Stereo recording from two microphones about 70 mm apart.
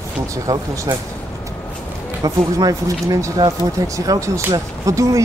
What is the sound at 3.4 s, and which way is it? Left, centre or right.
Speech, right.